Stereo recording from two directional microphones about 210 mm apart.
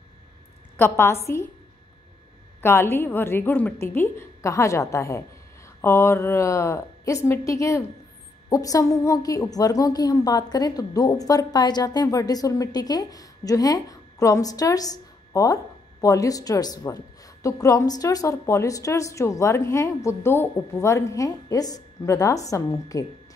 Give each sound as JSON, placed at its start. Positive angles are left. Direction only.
{"t": 0.7, "sound": "a woman's voice", "side_deg": 10}
{"t": 2.6, "sound": "a woman's voice", "side_deg": 10}